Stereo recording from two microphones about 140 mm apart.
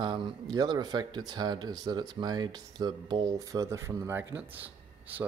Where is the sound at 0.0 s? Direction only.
35° right (ahead or behind).